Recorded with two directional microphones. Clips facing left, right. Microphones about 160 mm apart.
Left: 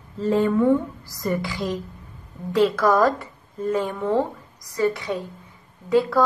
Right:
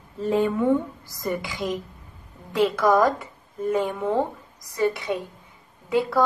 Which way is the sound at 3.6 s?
15° right (ahead or behind).